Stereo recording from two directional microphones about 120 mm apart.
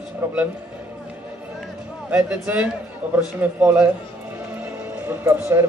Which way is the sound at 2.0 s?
10° right (ahead or behind).